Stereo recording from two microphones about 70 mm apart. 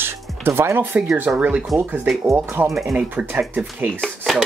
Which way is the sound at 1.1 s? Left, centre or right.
Right.